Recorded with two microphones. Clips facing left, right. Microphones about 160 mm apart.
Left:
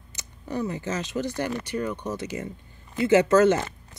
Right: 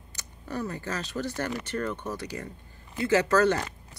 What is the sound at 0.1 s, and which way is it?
Speech, 20° left (ahead or behind).